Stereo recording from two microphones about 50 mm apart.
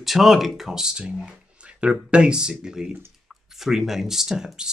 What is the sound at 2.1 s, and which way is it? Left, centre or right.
Speech, centre.